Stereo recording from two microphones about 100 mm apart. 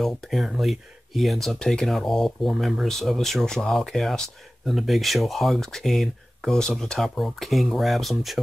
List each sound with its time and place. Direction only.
0.0 s speech: centre (ahead or behind)